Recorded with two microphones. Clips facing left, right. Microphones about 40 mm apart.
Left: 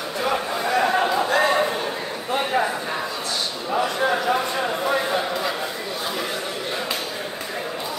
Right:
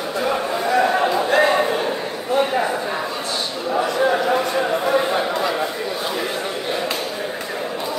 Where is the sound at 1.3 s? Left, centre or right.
Right.